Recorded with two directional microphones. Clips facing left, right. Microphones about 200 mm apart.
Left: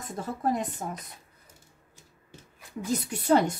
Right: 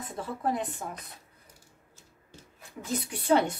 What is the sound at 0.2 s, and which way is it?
Speech, 45° left (ahead or behind).